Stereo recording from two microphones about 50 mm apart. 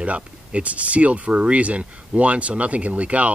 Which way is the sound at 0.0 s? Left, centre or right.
Right.